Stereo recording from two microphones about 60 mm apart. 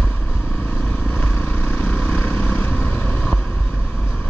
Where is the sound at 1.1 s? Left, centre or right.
Left.